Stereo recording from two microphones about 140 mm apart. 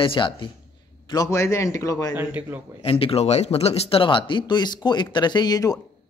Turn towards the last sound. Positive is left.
turn(degrees=25)  # may be behind; listen again after turning